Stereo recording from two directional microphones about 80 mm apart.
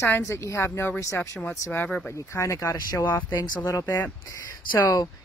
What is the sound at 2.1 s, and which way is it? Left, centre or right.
Speech, left.